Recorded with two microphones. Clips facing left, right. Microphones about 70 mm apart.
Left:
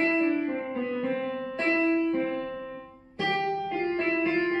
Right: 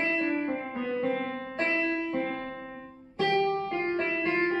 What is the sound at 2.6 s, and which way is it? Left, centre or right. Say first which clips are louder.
Music: left 3 dB; centre.